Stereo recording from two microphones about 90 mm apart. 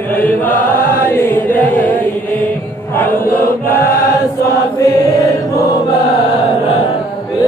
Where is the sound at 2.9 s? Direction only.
20° left (ahead or behind).